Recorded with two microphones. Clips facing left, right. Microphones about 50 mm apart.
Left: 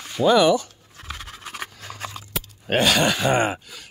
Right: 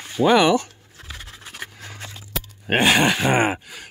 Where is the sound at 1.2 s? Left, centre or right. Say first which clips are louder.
Left 1 dB; left.